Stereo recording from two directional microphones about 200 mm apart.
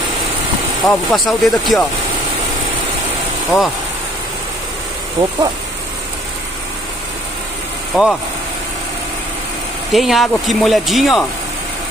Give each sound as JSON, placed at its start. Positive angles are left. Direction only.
{"t": 0.8, "sound": "speech", "side_deg": 0}
{"t": 3.4, "sound": "speech", "side_deg": 0}
{"t": 5.2, "sound": "speech", "side_deg": -30}
{"t": 7.9, "sound": "speech", "side_deg": 0}
{"t": 9.9, "sound": "speech", "side_deg": 0}